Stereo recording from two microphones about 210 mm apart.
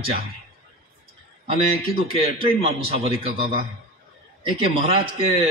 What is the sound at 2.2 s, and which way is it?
A man's voice, 25° right (ahead or behind).